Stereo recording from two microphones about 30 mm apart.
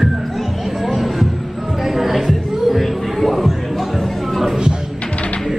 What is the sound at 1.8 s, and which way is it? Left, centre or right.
Music, centre.